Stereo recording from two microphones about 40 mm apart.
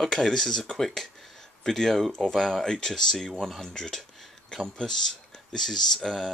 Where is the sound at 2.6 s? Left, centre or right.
Centre.